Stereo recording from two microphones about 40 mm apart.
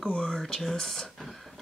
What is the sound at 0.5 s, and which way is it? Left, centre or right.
Speech, centre.